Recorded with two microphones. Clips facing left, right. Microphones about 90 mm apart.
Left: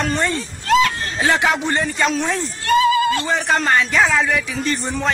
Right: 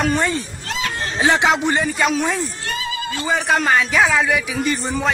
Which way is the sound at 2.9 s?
60° left (ahead or behind).